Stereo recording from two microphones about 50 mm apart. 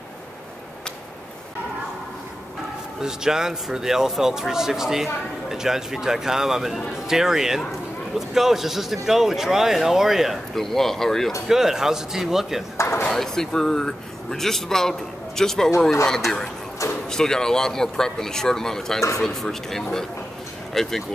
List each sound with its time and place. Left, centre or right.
3.0 s a man's voice: centre
10.5 s a man's voice: centre
11.4 s speech: centre
12.7 s a sound: left
13.1 s a man's voice: centre
17.1 s a man's voice: centre